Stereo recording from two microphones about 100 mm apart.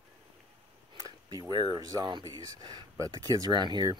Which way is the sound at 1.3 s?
45° right (ahead or behind).